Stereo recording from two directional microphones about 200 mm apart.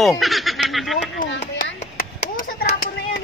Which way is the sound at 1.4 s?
40° left (ahead or behind).